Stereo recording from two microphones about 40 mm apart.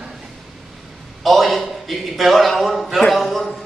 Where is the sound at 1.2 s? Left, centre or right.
Centre.